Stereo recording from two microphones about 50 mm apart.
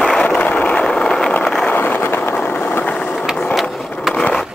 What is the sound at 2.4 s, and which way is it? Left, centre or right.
Vehicle, left.